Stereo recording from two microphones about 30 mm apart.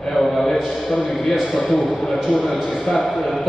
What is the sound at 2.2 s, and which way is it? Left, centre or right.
Speech, centre.